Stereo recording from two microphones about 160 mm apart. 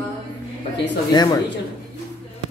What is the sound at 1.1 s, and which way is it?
Speech, 25° left (ahead or behind).